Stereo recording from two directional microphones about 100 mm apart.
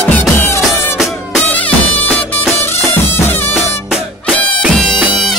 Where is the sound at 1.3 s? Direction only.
15° left (ahead or behind).